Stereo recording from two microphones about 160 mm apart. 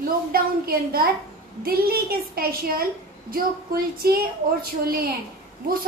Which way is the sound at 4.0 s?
70° right (ahead or behind).